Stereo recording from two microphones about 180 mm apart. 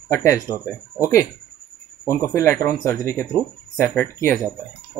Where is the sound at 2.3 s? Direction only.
15° left (ahead or behind).